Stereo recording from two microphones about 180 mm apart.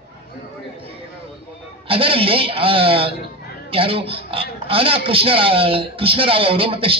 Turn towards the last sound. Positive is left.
turn(degrees=-30)  # may be behind; listen again after turning